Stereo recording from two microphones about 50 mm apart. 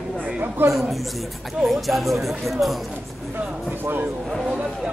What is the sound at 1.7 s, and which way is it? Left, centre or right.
Speech, centre.